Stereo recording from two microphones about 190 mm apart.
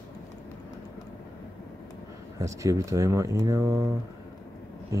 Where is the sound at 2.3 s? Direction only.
15° right (ahead or behind).